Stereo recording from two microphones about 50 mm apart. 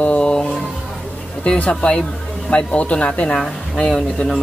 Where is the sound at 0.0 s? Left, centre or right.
Left.